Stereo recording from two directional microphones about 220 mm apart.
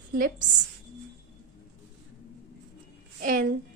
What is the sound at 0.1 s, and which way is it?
Speech, 40° right (ahead or behind).